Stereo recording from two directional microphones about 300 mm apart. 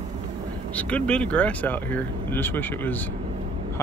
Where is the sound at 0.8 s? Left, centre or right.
Centre.